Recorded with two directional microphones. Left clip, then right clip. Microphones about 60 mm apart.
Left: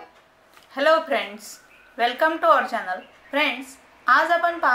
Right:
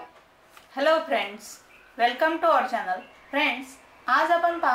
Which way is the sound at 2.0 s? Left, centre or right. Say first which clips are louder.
Left 2 dB; left.